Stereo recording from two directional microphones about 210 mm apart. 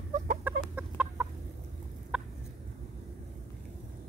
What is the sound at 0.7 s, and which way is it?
Chicken, 5° right (ahead or behind).